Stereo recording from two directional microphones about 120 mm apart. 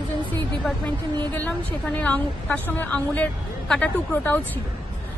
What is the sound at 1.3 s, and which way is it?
A woman's voice, 15° left (ahead or behind).